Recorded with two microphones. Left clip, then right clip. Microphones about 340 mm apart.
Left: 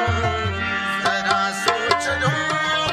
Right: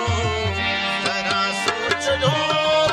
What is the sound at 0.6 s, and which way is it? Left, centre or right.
Music, centre.